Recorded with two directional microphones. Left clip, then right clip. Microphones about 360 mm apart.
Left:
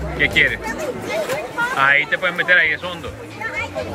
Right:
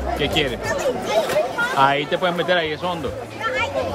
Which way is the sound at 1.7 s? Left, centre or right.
Centre.